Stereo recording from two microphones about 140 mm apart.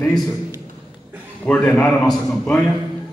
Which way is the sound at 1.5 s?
10° left (ahead or behind).